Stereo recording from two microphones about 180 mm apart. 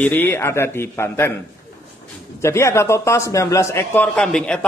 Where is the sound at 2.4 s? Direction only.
15° left (ahead or behind).